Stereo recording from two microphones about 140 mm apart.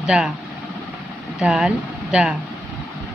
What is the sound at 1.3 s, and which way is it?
Speech, 5° right (ahead or behind).